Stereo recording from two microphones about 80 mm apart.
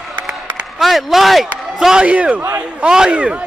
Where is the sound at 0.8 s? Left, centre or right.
Centre.